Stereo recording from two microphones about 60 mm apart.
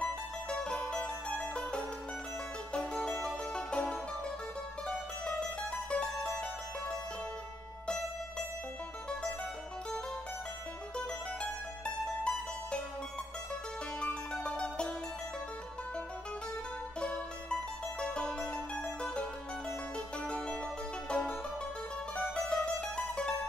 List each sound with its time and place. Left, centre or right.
0.0 s music: centre
5.9 s music: centre
11.8 s mandolin: centre
14.0 s music: centre
17.0 s music: centre
20.2 s music: centre
22.3 s mandolin: centre